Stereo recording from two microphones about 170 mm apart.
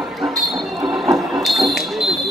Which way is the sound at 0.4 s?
Centre (ahead or behind).